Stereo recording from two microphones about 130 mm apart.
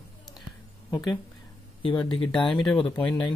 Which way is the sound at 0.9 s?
35° left (ahead or behind).